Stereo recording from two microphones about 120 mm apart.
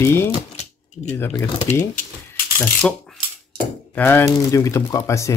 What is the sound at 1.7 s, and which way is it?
Speech, 90° left.